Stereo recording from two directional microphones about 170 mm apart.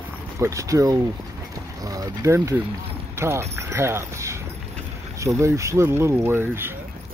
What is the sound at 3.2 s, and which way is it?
Speech, 15° right (ahead or behind).